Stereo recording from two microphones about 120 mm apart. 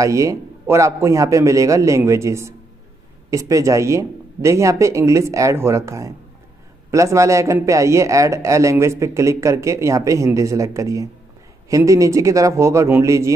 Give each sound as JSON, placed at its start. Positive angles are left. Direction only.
{"t": 0.0, "sound": "speech", "side_deg": -25}